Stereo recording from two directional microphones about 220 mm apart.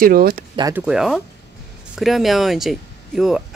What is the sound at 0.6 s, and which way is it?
Speech, 15° right (ahead or behind).